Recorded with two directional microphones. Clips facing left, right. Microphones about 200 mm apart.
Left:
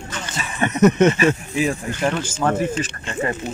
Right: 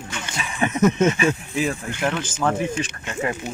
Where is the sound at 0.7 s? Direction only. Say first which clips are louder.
Left 4 dB; 70° left (ahead or behind).